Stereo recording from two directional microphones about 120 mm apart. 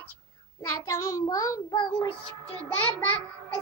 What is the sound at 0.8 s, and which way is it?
Child singing, 25° left (ahead or behind).